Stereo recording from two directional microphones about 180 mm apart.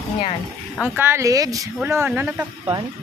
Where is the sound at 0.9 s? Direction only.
15° right (ahead or behind).